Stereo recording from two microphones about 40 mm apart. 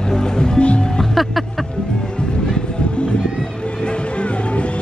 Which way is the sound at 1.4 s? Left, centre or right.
Centre.